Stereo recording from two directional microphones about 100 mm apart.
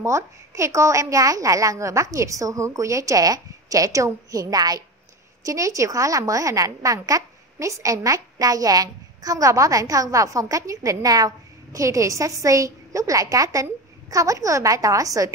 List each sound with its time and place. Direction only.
0.0 s a woman's voice: 30° right (ahead or behind)